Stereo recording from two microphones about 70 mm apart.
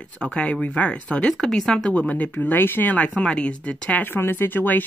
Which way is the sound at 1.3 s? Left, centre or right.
Centre.